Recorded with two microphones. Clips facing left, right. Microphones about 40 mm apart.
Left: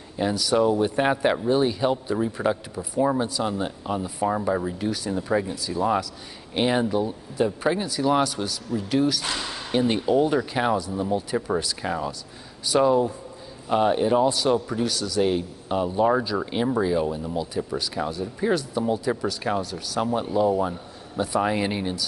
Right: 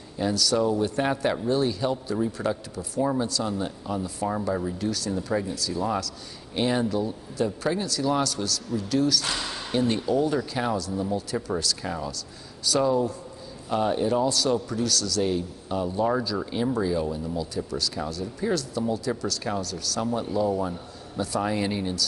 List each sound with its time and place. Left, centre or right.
0.2 s a man's voice: left
9.2 s speech: centre
9.7 s a man's voice: left